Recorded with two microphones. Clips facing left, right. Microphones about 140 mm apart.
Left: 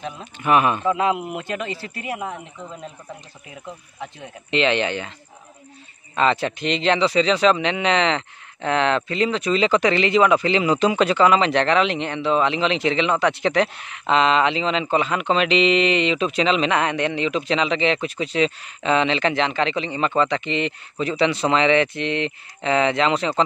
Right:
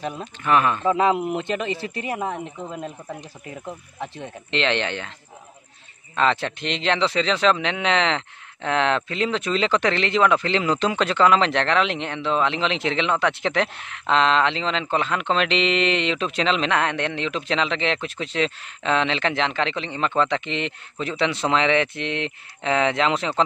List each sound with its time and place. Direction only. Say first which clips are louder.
0.4 s speech: left 2 dB; 15° left (ahead or behind)
1.3 s speech: right 3 dB; 25° right (ahead or behind)
4.2 s speech: left 4 dB; 5° left (ahead or behind)
6.1 s speech: left 2 dB; 5° left (ahead or behind)